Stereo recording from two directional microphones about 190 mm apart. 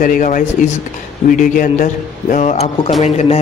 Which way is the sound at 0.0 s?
45° left (ahead or behind).